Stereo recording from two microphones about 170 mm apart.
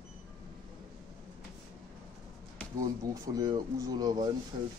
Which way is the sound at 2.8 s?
20° right (ahead or behind).